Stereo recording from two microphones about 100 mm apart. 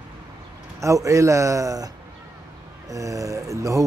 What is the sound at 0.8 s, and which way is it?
A man's voice, 30° right (ahead or behind).